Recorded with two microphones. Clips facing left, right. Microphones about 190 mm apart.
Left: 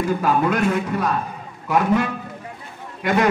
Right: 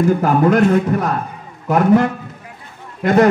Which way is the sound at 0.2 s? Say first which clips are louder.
Right 6 dB; 50° right (ahead or behind).